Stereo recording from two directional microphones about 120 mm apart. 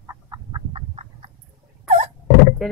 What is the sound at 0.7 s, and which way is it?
Frog, 55° right (ahead or behind).